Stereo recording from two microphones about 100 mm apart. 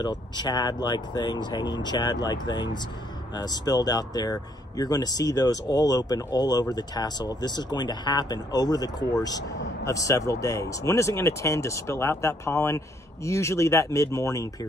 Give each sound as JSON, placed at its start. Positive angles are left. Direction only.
{"t": 0.0, "sound": "speech", "side_deg": 40}